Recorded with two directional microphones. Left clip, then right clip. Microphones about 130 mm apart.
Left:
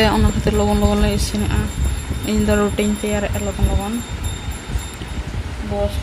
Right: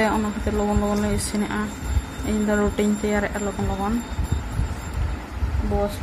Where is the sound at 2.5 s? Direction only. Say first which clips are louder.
Left 3 dB; 30° left (ahead or behind).